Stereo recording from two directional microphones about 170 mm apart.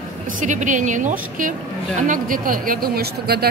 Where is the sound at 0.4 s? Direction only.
45° right (ahead or behind).